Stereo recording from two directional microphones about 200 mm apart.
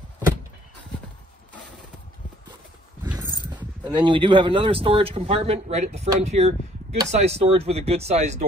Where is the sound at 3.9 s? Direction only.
25° right (ahead or behind).